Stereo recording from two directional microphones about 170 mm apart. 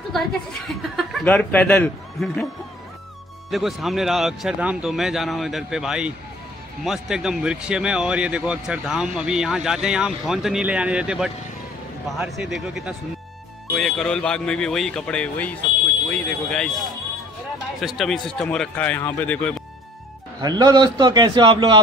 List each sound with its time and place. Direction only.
0.1 s a woman's voice: centre (ahead or behind)
3.4 s speech: centre (ahead or behind)
17.7 s speech: centre (ahead or behind)
20.4 s a man's voice: 25° right (ahead or behind)